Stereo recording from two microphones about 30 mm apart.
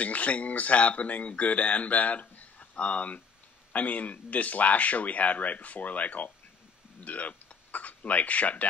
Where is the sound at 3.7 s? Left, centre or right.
Left.